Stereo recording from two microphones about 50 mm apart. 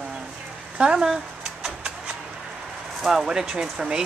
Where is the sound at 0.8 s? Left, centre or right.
Centre.